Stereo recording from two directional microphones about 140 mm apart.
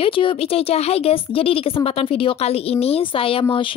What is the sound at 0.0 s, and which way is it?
A woman's voice, 40° left (ahead or behind).